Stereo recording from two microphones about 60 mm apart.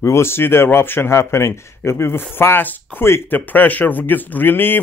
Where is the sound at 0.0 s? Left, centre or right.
Left.